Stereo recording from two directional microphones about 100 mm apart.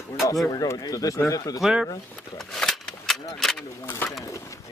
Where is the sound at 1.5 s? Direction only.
Centre (ahead or behind).